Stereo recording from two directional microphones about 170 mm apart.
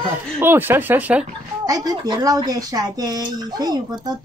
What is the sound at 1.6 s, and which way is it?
Speech, 20° right (ahead or behind).